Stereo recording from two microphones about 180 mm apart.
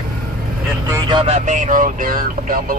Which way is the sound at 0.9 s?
25° right (ahead or behind).